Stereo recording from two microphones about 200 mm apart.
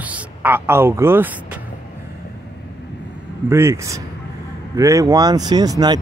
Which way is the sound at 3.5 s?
15° right (ahead or behind).